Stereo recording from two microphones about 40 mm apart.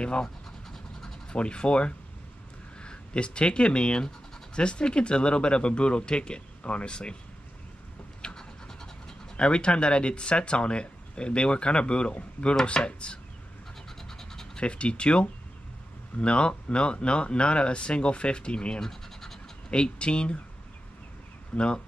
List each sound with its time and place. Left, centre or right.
0.0 s speech: left
1.3 s speech: left
8.2 s scratch: left
9.4 s speech: left
14.0 s scratch: centre
14.6 s speech: left
18.8 s scratch: centre
19.7 s speech: left
21.5 s speech: left